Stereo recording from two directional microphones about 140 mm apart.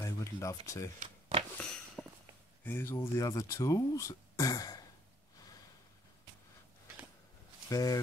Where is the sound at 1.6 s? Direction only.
5° left (ahead or behind).